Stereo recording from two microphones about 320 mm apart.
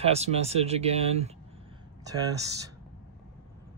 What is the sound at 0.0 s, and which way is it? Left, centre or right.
Speech, centre.